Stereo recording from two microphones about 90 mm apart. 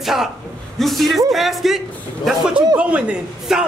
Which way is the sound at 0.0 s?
5° right (ahead or behind).